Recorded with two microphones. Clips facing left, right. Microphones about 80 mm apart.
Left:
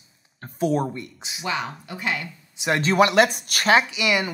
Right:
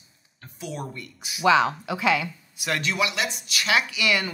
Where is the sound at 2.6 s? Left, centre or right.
Left.